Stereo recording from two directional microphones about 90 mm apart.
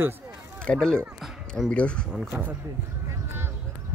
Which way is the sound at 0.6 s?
10° left (ahead or behind).